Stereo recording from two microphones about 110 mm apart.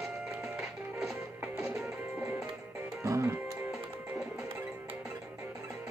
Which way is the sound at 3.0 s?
25° right (ahead or behind).